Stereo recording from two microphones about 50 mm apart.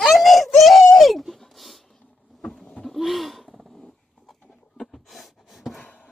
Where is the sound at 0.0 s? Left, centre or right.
Centre.